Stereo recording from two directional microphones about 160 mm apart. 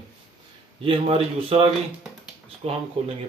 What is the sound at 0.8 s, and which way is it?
Speech, 35° right (ahead or behind).